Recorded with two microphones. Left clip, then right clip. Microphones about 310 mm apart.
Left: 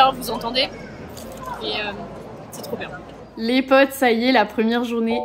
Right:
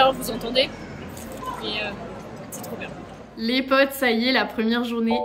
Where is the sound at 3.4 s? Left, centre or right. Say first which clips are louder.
Left 4 dB; centre.